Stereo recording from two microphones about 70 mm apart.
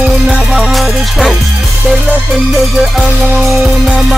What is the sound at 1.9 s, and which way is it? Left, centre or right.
Music, centre.